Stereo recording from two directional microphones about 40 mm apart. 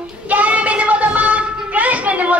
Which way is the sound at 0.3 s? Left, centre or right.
Right.